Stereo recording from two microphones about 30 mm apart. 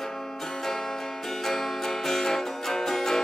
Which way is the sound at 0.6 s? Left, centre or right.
Centre.